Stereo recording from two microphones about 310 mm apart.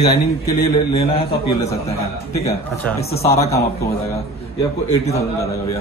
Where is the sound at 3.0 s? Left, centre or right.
Centre.